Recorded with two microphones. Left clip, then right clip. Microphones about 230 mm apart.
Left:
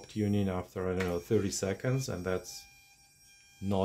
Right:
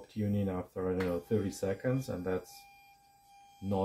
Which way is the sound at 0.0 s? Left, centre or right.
Left.